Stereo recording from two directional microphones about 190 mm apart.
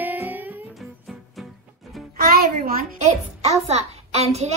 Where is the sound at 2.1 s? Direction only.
55° right (ahead or behind).